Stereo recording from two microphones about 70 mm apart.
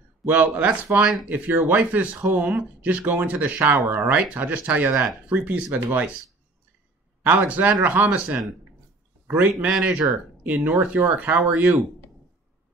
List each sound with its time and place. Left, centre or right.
0.2 s speech: right
4.9 s speech: centre
5.3 s speech: right
7.2 s speech: right
10.1 s speech: right